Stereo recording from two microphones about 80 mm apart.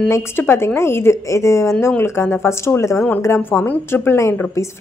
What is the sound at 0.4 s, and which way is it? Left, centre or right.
A woman's voice, left.